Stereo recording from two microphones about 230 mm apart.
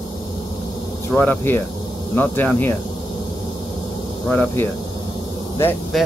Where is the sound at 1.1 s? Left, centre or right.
Centre.